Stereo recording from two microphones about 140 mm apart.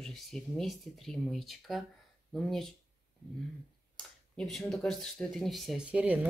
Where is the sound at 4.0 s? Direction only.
Centre (ahead or behind).